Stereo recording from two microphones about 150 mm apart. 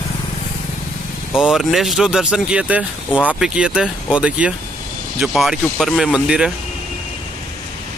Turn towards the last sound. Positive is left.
turn(degrees=-5)  # may be behind; listen again after turning